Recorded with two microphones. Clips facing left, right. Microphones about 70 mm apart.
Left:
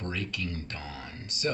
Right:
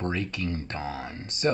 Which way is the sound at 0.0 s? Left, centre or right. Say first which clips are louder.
Right 5 dB; right.